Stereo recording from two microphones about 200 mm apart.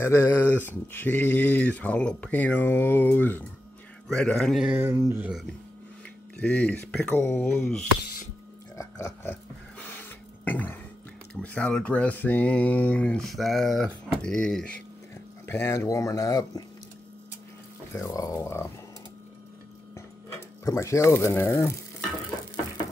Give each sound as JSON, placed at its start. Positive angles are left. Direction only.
{"t": 0.0, "sound": "speech", "side_deg": 10}
{"t": 8.7, "sound": "a sound", "side_deg": 15}
{"t": 11.3, "sound": "speech", "side_deg": 5}
{"t": 17.9, "sound": "speech", "side_deg": 15}
{"t": 20.6, "sound": "speech", "side_deg": 15}